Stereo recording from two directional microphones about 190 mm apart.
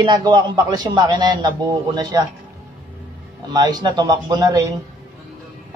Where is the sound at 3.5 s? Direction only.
20° right (ahead or behind).